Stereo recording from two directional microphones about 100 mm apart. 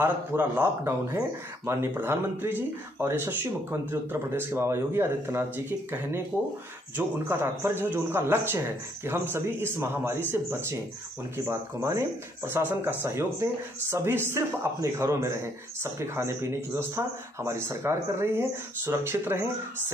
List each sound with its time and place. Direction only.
0.0 s speech: 20° right (ahead or behind)